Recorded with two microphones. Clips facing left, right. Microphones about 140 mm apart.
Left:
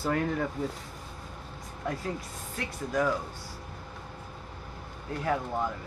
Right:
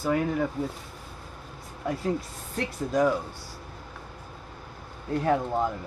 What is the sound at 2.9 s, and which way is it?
Speech, 20° right (ahead or behind).